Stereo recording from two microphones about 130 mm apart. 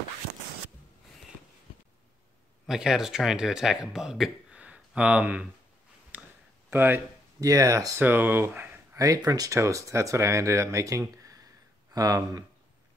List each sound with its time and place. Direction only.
2.6 s speech: 5° right (ahead or behind)
6.1 s a sound: 15° right (ahead or behind)
6.7 s speech: 15° right (ahead or behind)
8.1 s speech: 15° right (ahead or behind)
8.9 s speech: 25° right (ahead or behind)